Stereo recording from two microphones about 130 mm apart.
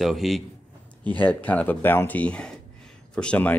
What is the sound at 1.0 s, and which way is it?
Speech, 15° left (ahead or behind).